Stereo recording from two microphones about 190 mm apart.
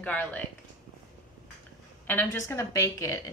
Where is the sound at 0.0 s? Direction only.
5° left (ahead or behind).